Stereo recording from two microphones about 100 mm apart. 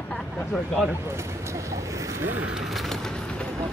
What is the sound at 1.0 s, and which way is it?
Speech, 30° right (ahead or behind).